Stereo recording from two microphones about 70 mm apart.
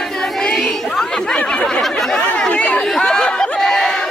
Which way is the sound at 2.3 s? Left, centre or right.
Centre.